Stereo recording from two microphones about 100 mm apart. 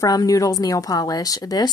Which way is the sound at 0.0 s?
40° left (ahead or behind).